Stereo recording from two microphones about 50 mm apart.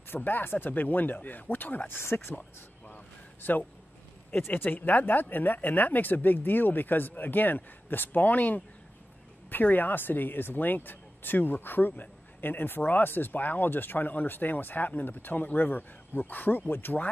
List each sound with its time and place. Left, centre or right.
0.1 s speech: left
2.0 s speech: left
3.4 s speech: left